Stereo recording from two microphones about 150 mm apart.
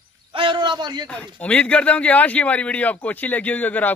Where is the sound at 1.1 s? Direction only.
10° left (ahead or behind).